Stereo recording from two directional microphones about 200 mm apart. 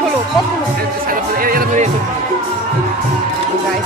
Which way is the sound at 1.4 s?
45° right (ahead or behind).